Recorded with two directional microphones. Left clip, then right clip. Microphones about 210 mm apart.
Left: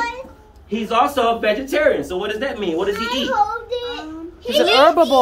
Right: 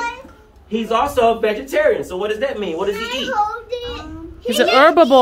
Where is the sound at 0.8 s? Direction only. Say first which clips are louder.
Right 1 dB; 10° right (ahead or behind).